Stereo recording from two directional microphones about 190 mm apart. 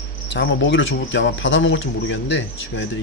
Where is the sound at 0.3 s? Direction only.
70° left (ahead or behind).